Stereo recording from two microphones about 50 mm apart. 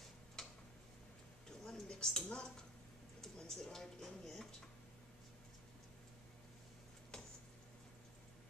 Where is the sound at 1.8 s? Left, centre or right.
Centre.